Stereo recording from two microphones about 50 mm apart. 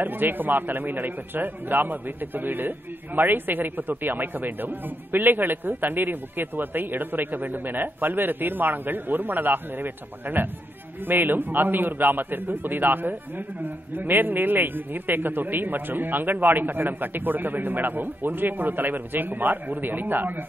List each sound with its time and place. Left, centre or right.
0.0 s a man's voice: right